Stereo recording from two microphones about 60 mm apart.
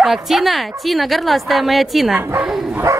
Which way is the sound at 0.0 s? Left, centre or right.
Centre.